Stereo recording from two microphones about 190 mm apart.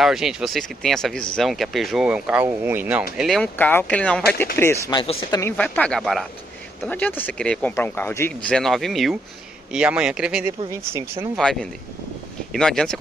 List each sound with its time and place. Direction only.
0.0 s speech: centre (ahead or behind)
3.2 s speech: centre (ahead or behind); by 5.5 s 20° left (ahead or behind)
5.6 s speech: 5° left (ahead or behind); by 11.2 s 15° right (ahead or behind)
12.5 s speech: 5° left (ahead or behind)